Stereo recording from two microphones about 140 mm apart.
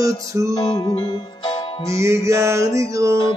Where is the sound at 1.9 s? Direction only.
20° right (ahead or behind).